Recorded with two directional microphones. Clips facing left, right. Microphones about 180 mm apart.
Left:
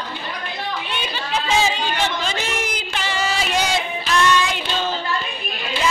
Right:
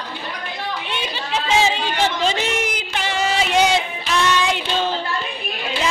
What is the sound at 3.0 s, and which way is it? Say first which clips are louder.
Music: right 3 dB; 20° right (ahead or behind).